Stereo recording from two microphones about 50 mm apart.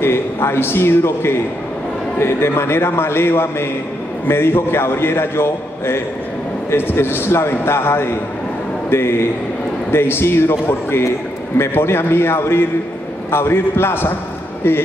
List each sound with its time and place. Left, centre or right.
0.0 s a man's voice: left